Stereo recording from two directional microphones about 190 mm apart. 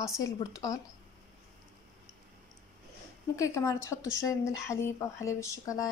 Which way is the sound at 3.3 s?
15° left (ahead or behind).